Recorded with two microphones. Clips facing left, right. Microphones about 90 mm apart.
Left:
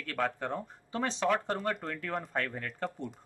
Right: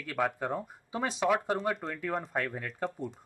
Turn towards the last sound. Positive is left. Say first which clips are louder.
# right 2 dB
turn(degrees=0)  # may be behind; listen again after turning